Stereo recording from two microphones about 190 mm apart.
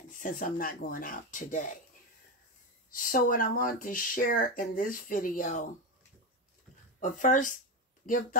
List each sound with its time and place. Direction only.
0.2 s speech: 45° left (ahead or behind)
2.9 s speech: 45° left (ahead or behind)
7.0 s speech: 40° left (ahead or behind)